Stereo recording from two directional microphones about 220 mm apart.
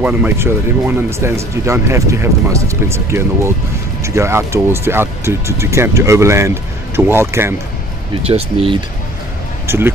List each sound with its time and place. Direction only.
0.0 s speech: 10° right (ahead or behind)
8.3 s speech: 25° right (ahead or behind)
9.7 s speech: 10° right (ahead or behind)